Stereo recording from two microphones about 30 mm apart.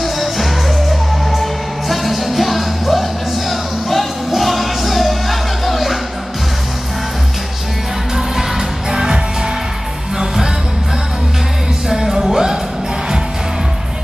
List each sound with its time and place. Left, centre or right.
0.0 s music: centre
8.9 s music: right
11.9 s music: centre